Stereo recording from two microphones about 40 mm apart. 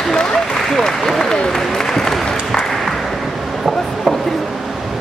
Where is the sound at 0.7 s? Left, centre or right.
Centre.